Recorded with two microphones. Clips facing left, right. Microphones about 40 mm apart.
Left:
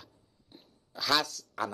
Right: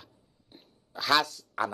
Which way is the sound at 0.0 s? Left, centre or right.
Centre.